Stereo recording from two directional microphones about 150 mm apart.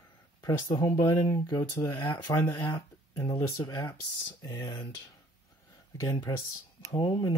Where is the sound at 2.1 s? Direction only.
30° left (ahead or behind).